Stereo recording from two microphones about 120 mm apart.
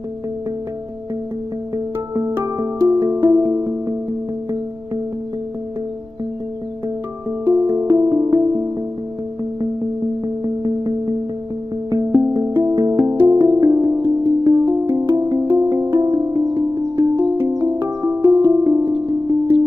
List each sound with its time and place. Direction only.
2.4 s music: 30° right (ahead or behind)
7.4 s music: 25° right (ahead or behind)
10.2 s music: 35° right (ahead or behind)
12.2 s music: 25° right (ahead or behind)